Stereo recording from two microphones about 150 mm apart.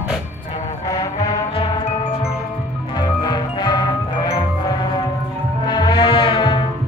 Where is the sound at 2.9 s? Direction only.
30° left (ahead or behind).